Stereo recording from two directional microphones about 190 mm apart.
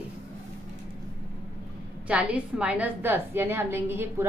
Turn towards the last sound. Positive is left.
turn(degrees=-10)  # may be behind; listen again after turning